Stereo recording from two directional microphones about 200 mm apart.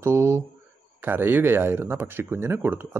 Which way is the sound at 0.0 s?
10° right (ahead or behind).